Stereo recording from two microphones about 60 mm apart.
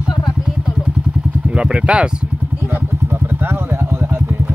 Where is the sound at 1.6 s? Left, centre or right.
Centre.